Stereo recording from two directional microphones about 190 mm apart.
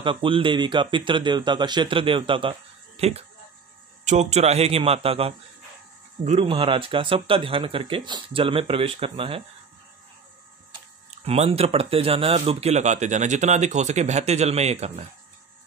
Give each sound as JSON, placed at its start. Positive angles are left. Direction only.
{"t": 0.0, "sound": "speech", "side_deg": -25}
{"t": 11.2, "sound": "speech", "side_deg": -35}